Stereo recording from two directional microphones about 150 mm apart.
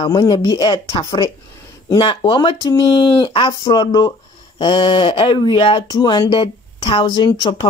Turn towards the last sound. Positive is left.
turn(degrees=30)  # may be behind; listen again after turning